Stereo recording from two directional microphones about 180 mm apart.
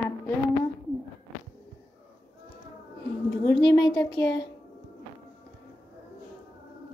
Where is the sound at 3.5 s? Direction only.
25° left (ahead or behind).